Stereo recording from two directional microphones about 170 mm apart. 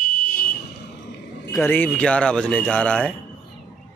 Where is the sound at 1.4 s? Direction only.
15° left (ahead or behind).